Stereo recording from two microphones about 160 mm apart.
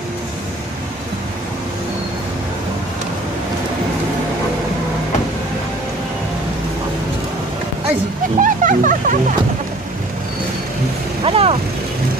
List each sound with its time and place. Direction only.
8.4 s music: 55° right (ahead or behind)
11.2 s vehicle: 35° right (ahead or behind)